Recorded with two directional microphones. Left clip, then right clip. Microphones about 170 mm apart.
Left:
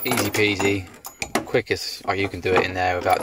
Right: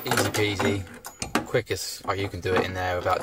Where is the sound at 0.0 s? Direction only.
15° left (ahead or behind).